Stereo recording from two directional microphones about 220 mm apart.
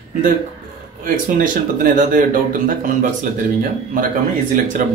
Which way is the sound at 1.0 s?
40° right (ahead or behind).